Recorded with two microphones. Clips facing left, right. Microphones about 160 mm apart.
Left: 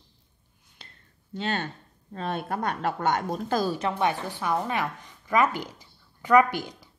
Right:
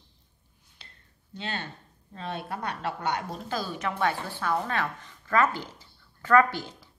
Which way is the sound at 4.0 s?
20° left (ahead or behind).